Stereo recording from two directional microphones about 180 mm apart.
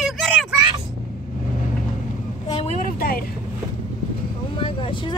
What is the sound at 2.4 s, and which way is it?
Vehicle, 35° left (ahead or behind).